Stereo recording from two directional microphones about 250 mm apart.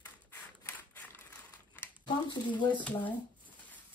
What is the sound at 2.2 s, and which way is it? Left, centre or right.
Speech, centre.